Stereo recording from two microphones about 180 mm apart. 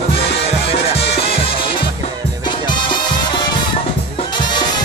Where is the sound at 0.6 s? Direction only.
35° left (ahead or behind).